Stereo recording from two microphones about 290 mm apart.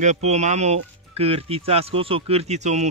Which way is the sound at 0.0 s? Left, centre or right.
Right.